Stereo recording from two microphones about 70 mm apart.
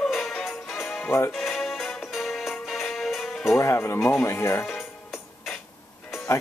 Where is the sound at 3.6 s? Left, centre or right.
Left.